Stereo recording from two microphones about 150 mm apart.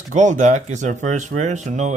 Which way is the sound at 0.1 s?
55° right (ahead or behind).